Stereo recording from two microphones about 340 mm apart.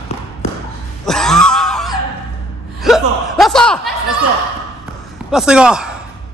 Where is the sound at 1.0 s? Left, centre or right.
Centre.